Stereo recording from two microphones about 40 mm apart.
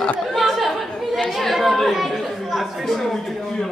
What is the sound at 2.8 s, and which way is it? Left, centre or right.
Speech, centre.